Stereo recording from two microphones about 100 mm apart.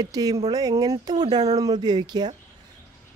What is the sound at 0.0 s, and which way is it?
A woman's voice, 40° right (ahead or behind).